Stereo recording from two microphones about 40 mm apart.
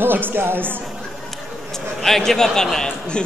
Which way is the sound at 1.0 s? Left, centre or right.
Centre.